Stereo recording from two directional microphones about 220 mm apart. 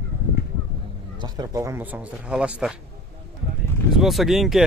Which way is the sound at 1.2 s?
20° right (ahead or behind).